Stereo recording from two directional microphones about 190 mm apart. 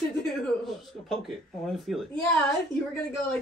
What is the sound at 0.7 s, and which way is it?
Speech, centre (ahead or behind).